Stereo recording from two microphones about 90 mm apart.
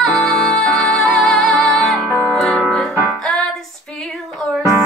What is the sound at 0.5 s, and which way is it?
Music, 10° left (ahead or behind).